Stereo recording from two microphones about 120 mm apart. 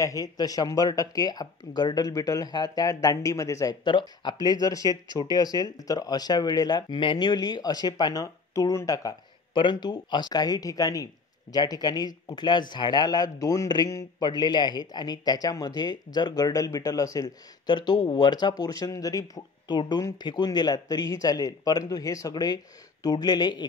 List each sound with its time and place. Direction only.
0.0 s speech: 30° left (ahead or behind)
3.8 s speech: 40° left (ahead or behind)
9.5 s speech: 40° left (ahead or behind)